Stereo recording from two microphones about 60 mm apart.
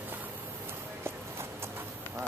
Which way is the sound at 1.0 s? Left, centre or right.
Right.